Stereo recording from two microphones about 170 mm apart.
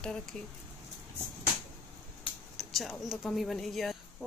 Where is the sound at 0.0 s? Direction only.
5° left (ahead or behind).